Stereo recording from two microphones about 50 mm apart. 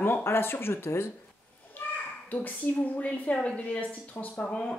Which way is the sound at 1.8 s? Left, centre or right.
Left.